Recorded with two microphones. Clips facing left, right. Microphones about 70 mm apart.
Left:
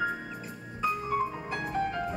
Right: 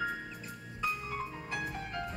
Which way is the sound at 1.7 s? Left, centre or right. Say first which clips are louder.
Left 9 dB; centre.